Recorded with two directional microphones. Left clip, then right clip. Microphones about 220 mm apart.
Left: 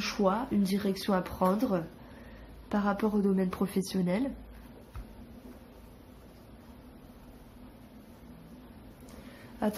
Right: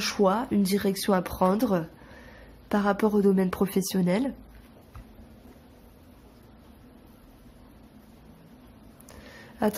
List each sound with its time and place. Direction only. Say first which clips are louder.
0.0 s speech: right 5 dB; 45° right (ahead or behind)
9.6 s a woman's voice: right 6 dB; 40° right (ahead or behind)